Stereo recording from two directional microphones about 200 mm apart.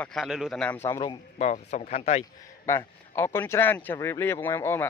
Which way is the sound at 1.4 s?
35° left (ahead or behind).